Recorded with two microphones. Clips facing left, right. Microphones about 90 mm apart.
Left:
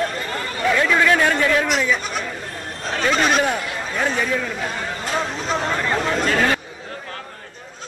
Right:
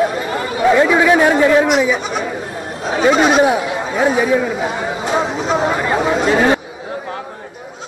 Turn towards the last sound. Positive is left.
turn(degrees=-20)  # may be behind; listen again after turning